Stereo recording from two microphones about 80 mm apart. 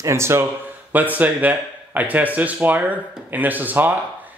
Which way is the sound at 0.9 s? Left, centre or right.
Right.